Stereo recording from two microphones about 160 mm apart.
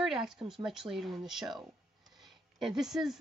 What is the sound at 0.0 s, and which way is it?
A woman's voice, centre (ahead or behind).